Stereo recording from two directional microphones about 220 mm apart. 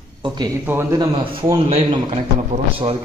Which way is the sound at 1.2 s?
25° right (ahead or behind).